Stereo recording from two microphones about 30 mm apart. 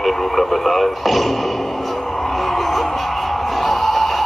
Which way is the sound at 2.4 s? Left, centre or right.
Centre.